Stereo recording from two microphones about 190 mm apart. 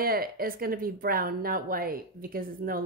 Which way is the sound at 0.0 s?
50° right (ahead or behind).